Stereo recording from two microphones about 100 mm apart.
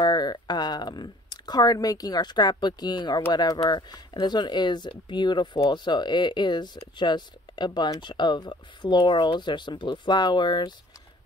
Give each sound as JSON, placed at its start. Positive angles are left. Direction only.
{"t": 0.0, "sound": "speech", "side_deg": 45}